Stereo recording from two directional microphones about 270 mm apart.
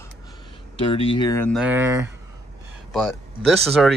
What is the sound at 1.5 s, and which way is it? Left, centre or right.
Speech, centre.